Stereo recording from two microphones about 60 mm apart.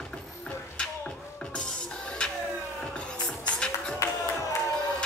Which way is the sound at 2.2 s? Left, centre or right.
Centre.